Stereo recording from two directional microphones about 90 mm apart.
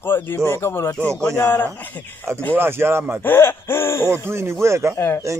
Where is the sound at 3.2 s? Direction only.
25° left (ahead or behind).